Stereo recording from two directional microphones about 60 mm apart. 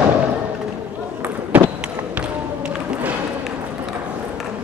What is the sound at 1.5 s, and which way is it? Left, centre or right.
Run, right.